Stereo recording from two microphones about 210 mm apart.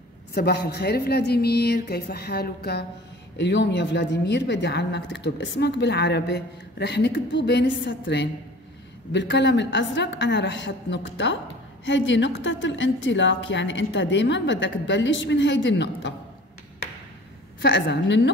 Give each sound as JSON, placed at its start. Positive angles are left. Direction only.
{"t": 0.3, "sound": "a woman's voice", "side_deg": 50}
{"t": 17.6, "sound": "a woman's voice", "side_deg": 55}